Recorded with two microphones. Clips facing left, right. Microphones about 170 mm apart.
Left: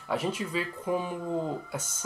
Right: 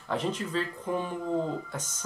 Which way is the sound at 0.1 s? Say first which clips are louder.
Even; 10° left (ahead or behind).